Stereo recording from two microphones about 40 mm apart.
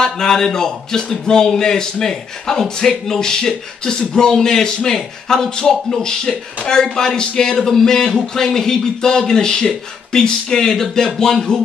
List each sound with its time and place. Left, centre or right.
0.0 s speech: centre